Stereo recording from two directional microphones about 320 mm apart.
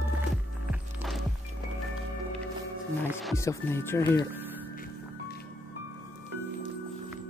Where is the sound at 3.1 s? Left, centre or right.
Centre.